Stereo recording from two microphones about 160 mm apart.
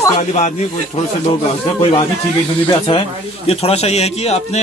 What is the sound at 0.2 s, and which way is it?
Speech, 45° left (ahead or behind).